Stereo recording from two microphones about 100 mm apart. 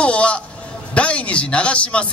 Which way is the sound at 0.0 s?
10° left (ahead or behind).